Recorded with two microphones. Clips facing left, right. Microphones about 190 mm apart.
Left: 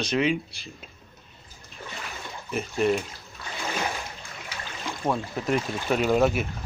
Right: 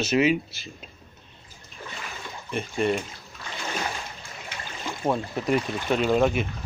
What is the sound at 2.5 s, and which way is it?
Speech, 5° left (ahead or behind).